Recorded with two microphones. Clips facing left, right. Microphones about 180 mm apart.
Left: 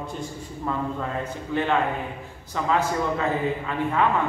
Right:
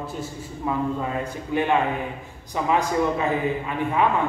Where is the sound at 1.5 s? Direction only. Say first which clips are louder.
Right 2 dB; 15° right (ahead or behind).